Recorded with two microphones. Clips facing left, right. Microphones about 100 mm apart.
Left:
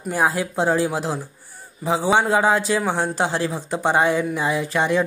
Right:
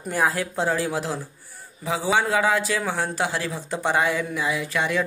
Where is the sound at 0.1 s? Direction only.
20° left (ahead or behind).